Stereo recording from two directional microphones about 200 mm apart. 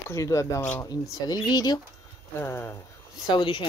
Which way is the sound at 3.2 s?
25° left (ahead or behind).